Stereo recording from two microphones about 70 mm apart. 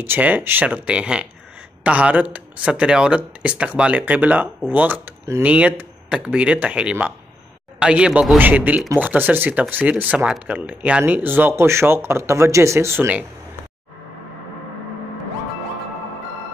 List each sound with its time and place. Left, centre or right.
0.0 s speech: right
0.7 s speech: centre; by 13.1 s right